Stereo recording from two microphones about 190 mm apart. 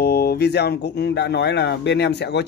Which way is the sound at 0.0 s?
55° left (ahead or behind).